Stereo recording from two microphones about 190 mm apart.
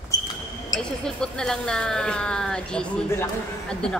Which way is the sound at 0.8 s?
5° left (ahead or behind).